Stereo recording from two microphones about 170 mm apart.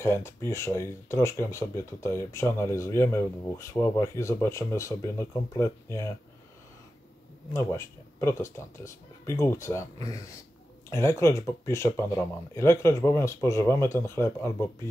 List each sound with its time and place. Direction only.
0.0 s speech: 15° left (ahead or behind)
7.5 s speech: 15° left (ahead or behind)